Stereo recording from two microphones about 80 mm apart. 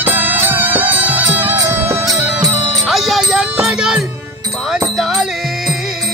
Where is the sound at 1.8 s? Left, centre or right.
Right.